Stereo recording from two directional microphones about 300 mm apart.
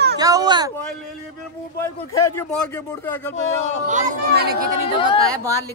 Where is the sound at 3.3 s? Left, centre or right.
Left.